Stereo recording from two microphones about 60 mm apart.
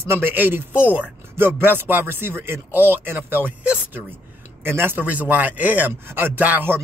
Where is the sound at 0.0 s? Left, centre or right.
Right.